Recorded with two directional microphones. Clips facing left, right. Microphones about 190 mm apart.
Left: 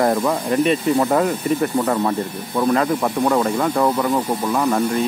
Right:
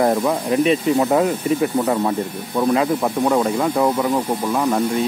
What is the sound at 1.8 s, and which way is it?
Speech, 15° right (ahead or behind).